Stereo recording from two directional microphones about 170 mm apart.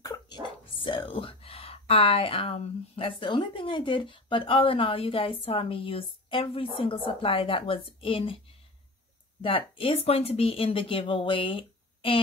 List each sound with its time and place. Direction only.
0.0 s speech: 25° left (ahead or behind)
9.4 s speech: 30° left (ahead or behind)